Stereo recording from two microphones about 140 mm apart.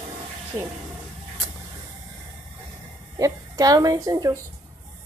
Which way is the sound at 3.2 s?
25° right (ahead or behind).